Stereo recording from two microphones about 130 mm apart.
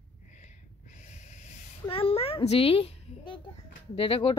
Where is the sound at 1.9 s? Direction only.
45° left (ahead or behind).